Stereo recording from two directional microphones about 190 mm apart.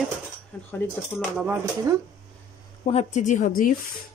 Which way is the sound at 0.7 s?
10° left (ahead or behind).